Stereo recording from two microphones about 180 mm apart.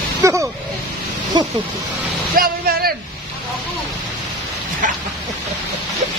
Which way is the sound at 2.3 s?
55° right (ahead or behind).